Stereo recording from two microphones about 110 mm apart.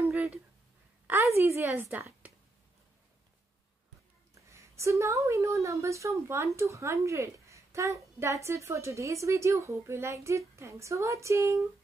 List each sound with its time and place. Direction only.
0.0 s a sound: 25° right (ahead or behind)
1.0 s a woman's voice: 25° right (ahead or behind)
4.5 s a woman's voice: 25° right (ahead or behind)